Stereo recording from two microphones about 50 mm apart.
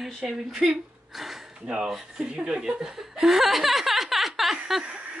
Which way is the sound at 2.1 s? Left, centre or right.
Right.